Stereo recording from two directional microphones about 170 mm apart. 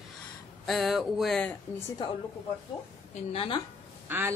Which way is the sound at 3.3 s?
35° left (ahead or behind).